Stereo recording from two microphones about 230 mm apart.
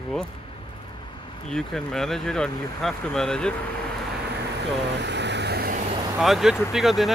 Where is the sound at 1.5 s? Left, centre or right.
Centre.